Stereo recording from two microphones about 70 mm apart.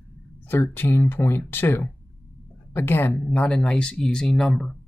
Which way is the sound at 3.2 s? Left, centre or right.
Left.